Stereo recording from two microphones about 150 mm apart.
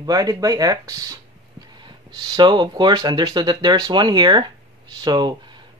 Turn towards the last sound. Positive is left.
turn(degrees=-30)  # may be behind; listen again after turning